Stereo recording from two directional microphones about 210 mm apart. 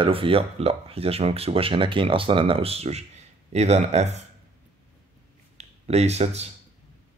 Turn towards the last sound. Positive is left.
turn(degrees=-30)  # may be behind; listen again after turning